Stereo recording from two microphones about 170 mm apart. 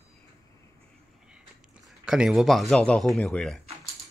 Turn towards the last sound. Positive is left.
turn(degrees=0)  # may be behind; listen again after turning